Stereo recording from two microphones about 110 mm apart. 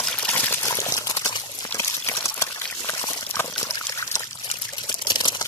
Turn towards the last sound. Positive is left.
turn(degrees=40)  # may be behind; listen again after turning